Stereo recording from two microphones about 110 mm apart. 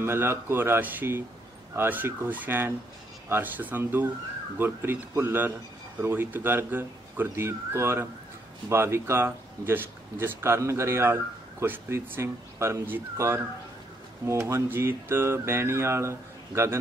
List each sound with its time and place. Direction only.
0.0 s speech: 20° right (ahead or behind)